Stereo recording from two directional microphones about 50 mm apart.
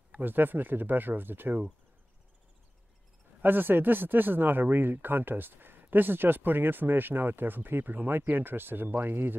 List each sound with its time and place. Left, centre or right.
0.2 s speech: right
3.4 s speech: right